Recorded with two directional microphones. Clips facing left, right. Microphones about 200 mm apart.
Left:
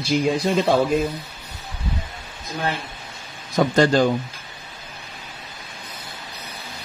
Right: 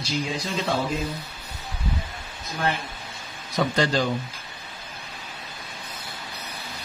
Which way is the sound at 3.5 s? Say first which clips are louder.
Left 6 dB; 50° left (ahead or behind).